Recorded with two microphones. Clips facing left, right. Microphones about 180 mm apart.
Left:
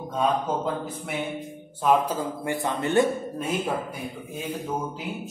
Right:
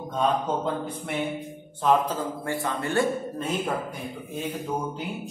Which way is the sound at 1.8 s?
10° left (ahead or behind).